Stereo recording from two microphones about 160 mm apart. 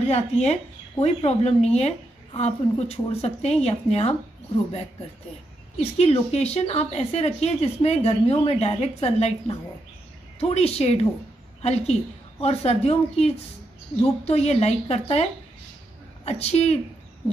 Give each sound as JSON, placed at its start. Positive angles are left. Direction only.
{"t": 0.1, "sound": "a woman's voice", "side_deg": 40}
{"t": 5.8, "sound": "a woman's voice", "side_deg": 40}
{"t": 16.3, "sound": "a woman's voice", "side_deg": 40}